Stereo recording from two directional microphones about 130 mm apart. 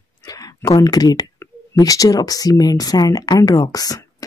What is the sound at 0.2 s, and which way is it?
Speech, 30° left (ahead or behind).